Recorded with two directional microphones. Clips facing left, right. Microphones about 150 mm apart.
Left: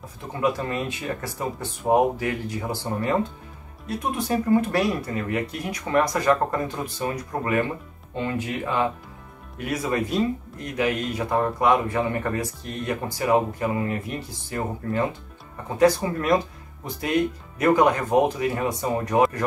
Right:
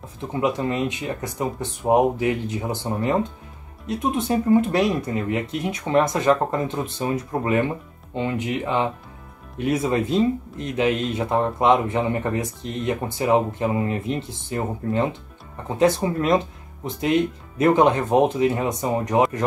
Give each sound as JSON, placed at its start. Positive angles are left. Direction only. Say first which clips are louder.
{"t": 0.2, "sound": "speech", "louder": "right 2 dB", "side_deg": -20}